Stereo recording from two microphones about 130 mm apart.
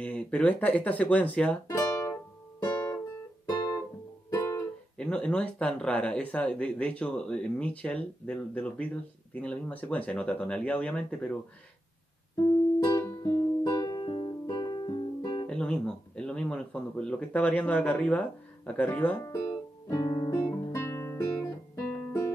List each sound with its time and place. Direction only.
0.0 s speech: 10° left (ahead or behind)
1.7 s music: 25° left (ahead or behind)
3.4 s guitar: 30° left (ahead or behind)
4.3 s music: 20° left (ahead or behind)
4.9 s speech: 10° left (ahead or behind)
12.8 s music: 25° left (ahead or behind)
15.4 s speech: 5° left (ahead or behind)
19.2 s music: 25° left (ahead or behind)